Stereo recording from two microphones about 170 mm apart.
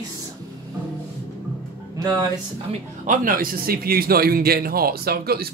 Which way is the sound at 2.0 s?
20° right (ahead or behind).